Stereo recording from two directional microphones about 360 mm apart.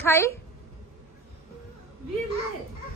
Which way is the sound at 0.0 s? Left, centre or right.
Centre.